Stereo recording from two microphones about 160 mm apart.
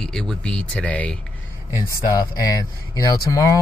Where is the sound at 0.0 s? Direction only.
5° left (ahead or behind).